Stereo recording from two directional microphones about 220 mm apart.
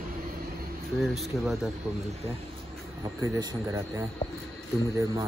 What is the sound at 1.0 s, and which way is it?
Speech, centre (ahead or behind).